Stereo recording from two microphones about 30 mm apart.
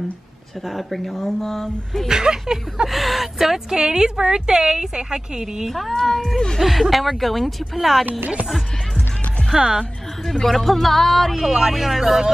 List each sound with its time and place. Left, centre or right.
0.7 s speech: centre
2.0 s a woman's voice: right
2.9 s speech: centre
3.7 s a woman's voice: right
5.7 s speech: centre
9.6 s speech: centre
10.5 s speech: centre
11.3 s a woman's voice: centre
11.7 s speech: centre